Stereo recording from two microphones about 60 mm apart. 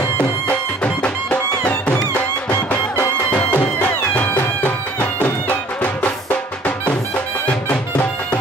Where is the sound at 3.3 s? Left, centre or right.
Left.